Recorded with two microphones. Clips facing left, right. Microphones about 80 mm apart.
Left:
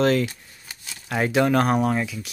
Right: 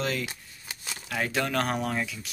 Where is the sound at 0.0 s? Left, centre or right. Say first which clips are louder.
Left 11 dB; left.